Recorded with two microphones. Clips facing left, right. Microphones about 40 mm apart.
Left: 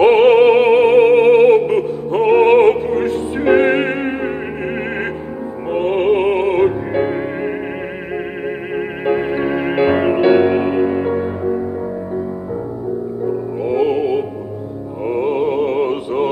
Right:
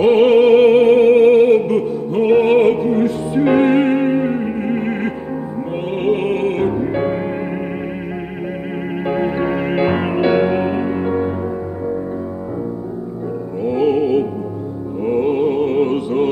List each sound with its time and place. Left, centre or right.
0.0 s music: left
6.9 s music: centre
9.0 s music: centre
13.6 s music: centre